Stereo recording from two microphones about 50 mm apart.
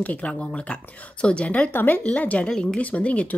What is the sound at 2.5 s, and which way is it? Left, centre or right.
Speech, centre.